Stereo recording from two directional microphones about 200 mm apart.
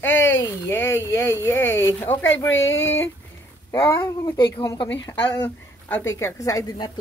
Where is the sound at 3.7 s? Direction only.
15° left (ahead or behind).